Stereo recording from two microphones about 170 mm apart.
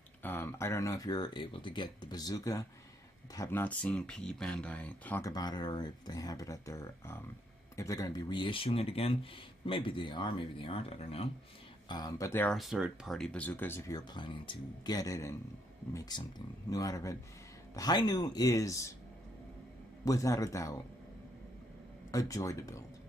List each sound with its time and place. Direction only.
0.2 s speech: 15° left (ahead or behind)
5.2 s speech: 25° left (ahead or behind)
11.9 s speech: 20° left (ahead or behind)
12.5 s speech: centre (ahead or behind); by 18.9 s 20° left (ahead or behind)
20.1 s speech: 20° left (ahead or behind)
22.1 s speech: 20° left (ahead or behind)